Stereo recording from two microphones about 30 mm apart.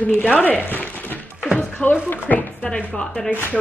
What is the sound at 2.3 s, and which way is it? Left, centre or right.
Chopping, left.